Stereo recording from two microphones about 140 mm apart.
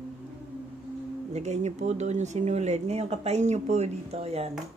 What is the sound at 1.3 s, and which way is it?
Speech, 55° right (ahead or behind).